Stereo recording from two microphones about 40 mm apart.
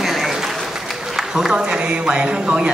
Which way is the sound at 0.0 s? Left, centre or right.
Centre.